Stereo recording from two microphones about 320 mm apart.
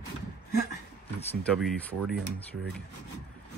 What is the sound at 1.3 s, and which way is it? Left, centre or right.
Speech, centre.